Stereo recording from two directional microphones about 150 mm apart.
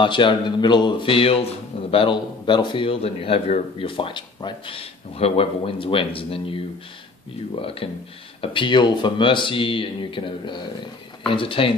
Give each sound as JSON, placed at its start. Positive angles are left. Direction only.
{"t": 0.0, "sound": "a man's voice", "side_deg": 30}